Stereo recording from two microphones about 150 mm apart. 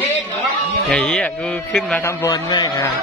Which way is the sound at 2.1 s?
25° left (ahead or behind).